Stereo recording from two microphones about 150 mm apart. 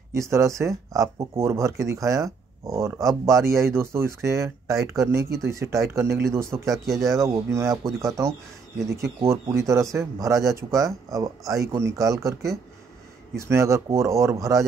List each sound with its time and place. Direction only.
0.1 s speech: 20° right (ahead or behind)